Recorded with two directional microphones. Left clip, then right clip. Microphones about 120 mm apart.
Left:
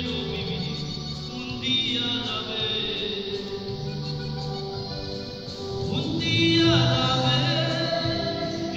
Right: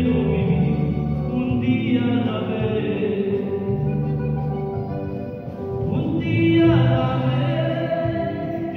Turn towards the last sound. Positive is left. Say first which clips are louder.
# left 1 dB
turn(degrees=-15)  # may be behind; listen again after turning